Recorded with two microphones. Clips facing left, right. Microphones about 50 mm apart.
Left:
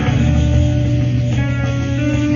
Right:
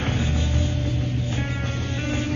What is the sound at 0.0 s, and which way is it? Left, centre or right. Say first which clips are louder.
Music: left 9 dB; left.